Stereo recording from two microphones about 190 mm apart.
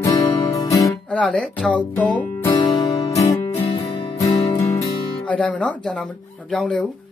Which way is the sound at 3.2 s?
30° left (ahead or behind).